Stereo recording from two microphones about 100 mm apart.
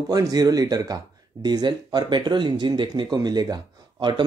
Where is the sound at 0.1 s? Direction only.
40° right (ahead or behind).